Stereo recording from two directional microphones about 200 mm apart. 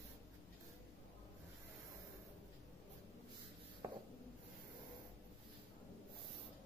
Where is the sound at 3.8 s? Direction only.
15° right (ahead or behind).